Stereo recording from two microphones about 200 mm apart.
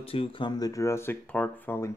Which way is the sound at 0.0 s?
30° left (ahead or behind).